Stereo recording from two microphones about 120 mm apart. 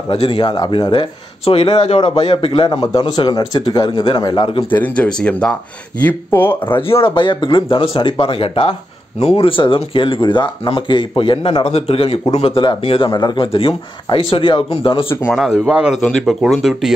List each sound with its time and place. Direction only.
0.1 s speech: 45° left (ahead or behind)
1.4 s a man's voice: 55° left (ahead or behind); by 4.6 s 40° left (ahead or behind)
4.6 s speech: 15° left (ahead or behind)
6.7 s speech: 50° left (ahead or behind)
13.1 s speech: 40° left (ahead or behind)
15.3 s a man's voice: centre (ahead or behind)
16.0 s speech: 5° left (ahead or behind)